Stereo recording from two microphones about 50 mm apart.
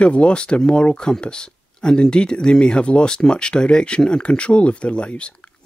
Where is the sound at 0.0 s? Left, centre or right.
Left.